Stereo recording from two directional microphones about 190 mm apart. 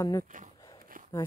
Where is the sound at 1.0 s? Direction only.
45° right (ahead or behind).